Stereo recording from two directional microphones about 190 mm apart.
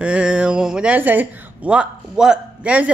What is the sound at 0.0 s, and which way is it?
Speech, 5° right (ahead or behind).